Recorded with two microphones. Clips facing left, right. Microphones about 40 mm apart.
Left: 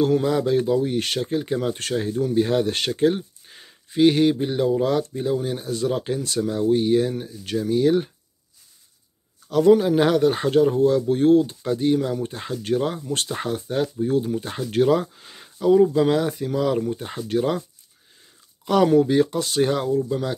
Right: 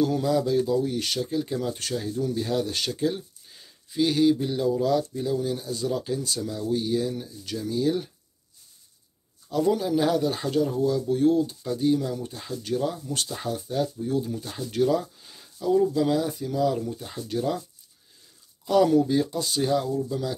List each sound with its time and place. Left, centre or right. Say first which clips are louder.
0.0 s speech: left 4 dB; left
9.5 s speech: left 8 dB; left
18.9 s speech: left 4 dB; left